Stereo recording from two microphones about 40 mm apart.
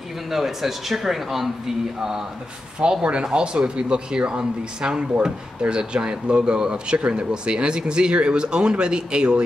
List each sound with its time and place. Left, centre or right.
0.3 s speech: centre
2.8 s speech: right